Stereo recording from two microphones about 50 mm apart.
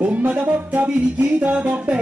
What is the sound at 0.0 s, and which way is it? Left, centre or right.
Music, right.